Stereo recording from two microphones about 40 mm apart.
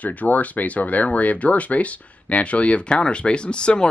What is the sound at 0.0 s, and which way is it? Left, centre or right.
Speech, left.